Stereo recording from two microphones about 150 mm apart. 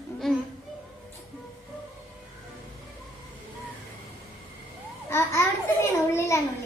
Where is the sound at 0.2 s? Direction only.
Centre (ahead or behind).